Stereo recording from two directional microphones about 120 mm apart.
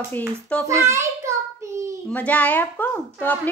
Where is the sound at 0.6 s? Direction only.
25° right (ahead or behind).